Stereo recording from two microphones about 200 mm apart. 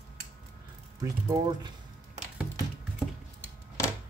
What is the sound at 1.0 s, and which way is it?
Speech, 20° right (ahead or behind).